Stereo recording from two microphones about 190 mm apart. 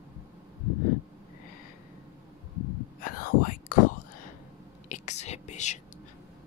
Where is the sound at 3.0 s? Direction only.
45° left (ahead or behind).